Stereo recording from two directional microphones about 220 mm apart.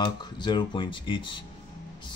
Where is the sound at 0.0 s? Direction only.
20° left (ahead or behind).